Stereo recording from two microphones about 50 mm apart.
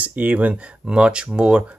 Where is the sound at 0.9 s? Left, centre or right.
Centre.